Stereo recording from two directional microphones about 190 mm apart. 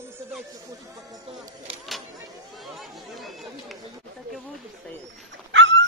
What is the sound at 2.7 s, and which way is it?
Chatter, centre (ahead or behind).